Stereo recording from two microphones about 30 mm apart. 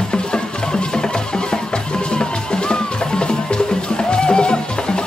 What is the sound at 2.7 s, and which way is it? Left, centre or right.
Music, left.